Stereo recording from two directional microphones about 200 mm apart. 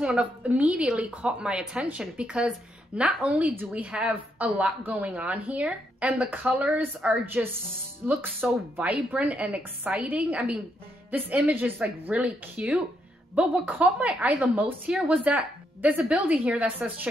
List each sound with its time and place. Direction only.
0.0 s a woman's voice: 5° right (ahead or behind)